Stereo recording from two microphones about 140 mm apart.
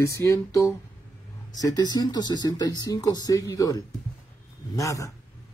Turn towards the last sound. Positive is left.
turn(degrees=25)  # may be behind; listen again after turning